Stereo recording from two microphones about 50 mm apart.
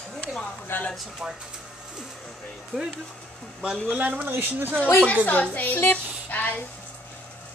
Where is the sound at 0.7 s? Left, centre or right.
Left.